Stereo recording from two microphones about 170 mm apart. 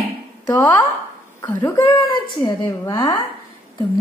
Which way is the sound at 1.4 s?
15° left (ahead or behind).